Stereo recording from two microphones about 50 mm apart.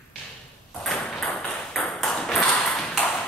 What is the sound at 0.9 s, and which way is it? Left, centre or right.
Ping, centre.